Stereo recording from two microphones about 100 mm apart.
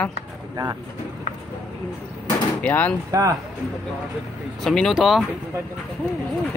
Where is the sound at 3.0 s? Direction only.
35° right (ahead or behind).